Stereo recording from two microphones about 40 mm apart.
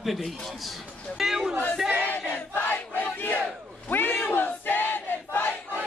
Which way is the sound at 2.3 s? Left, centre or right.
Left.